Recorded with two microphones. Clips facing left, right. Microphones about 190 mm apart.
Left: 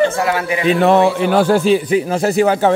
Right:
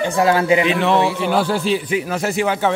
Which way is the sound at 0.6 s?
45° left (ahead or behind).